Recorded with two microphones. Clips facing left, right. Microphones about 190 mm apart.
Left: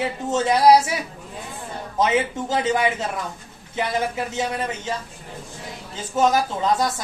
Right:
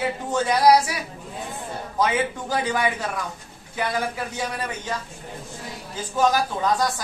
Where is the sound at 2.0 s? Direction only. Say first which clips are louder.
Left 2 dB; 25° left (ahead or behind).